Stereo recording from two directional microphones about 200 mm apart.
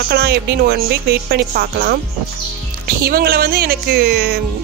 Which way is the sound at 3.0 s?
50° right (ahead or behind).